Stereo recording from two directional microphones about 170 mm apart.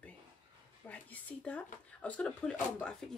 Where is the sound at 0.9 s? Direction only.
10° left (ahead or behind).